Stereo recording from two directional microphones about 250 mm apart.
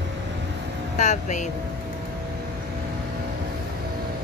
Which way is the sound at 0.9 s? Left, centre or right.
Left.